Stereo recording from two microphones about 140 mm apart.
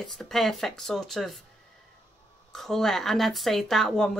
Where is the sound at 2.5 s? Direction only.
Centre (ahead or behind).